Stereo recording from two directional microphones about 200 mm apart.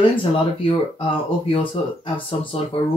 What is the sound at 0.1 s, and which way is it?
Speech, 25° left (ahead or behind).